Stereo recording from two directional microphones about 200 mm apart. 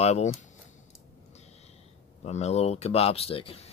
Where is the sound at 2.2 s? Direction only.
35° left (ahead or behind).